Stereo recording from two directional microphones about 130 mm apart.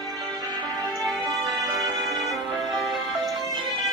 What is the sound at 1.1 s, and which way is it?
Music, 25° right (ahead or behind).